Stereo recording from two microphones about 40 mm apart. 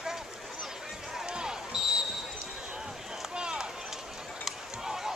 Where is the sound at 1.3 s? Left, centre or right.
Centre.